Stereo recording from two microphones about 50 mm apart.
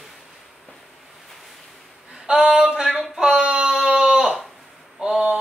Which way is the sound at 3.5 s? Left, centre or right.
Right.